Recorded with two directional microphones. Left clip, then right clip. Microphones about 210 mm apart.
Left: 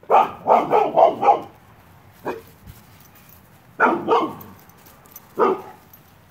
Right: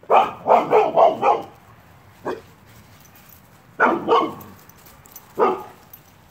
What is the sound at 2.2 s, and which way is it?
Dog, 20° left (ahead or behind).